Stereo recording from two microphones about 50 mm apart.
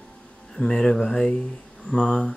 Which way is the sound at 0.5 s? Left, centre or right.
Centre.